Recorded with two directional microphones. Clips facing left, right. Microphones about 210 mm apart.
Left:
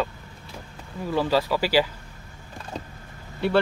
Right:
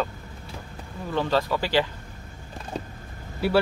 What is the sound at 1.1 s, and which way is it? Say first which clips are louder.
Speech: left 1 dB; 10° left (ahead or behind).